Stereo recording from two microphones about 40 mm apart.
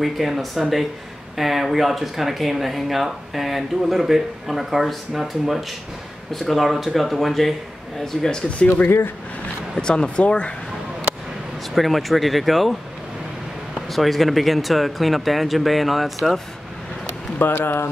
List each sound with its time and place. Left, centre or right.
0.0 s speech: centre
8.0 s speech: centre
9.8 s speech: left
11.7 s speech: centre
13.8 s speech: centre
17.5 s speech: left